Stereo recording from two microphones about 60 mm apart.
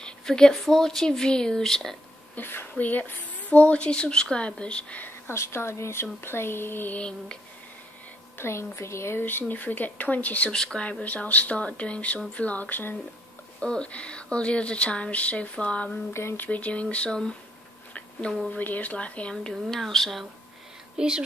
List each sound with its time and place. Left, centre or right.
0.0 s speech: centre
2.3 s a woman's voice: left; by 5.0 s centre
5.0 s speech: left
7.0 s speech: centre
8.4 s speech: left
9.2 s speech: left
10.5 s speech: centre
10.9 s speech: left
13.6 s speech: centre
16.1 s speech: left
16.4 s speech: left
18.5 s speech: left
19.3 s speech: centre
21.0 s speech: centre